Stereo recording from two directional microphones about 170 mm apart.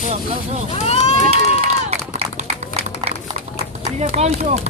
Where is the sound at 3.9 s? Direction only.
40° right (ahead or behind).